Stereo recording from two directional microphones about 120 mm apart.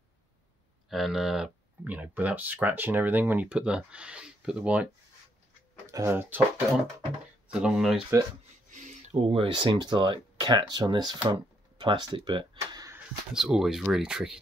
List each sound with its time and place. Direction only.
0.8 s speech: centre (ahead or behind)
5.9 s speech: 25° right (ahead or behind)
7.4 s speech: 5° right (ahead or behind)
8.6 s a sound: 90° right
9.3 s speech: 45° right (ahead or behind)
12.5 s a sound: 25° right (ahead or behind)
13.3 s speech: 5° right (ahead or behind)